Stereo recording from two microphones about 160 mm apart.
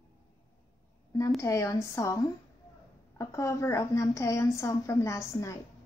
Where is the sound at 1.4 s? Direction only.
20° left (ahead or behind).